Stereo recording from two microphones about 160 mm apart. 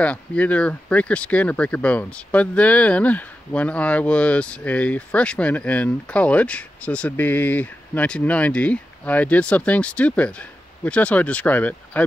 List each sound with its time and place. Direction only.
0.0 s speech: 10° left (ahead or behind)